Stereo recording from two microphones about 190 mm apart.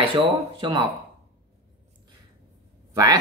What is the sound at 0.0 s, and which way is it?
Speech, 25° right (ahead or behind).